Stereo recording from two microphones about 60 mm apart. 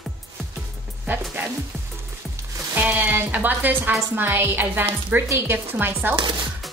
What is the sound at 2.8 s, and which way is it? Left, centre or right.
A woman's voice, right.